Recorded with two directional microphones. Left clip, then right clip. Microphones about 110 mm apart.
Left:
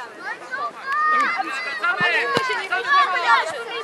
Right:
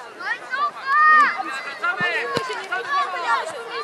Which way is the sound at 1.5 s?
10° left (ahead or behind).